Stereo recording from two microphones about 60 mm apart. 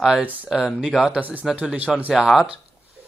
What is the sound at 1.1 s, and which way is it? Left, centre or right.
Speech, right.